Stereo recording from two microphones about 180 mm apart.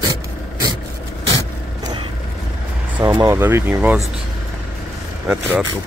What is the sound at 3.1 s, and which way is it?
Speech, 25° right (ahead or behind).